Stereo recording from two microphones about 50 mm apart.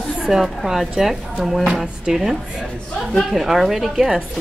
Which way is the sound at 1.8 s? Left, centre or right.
Centre.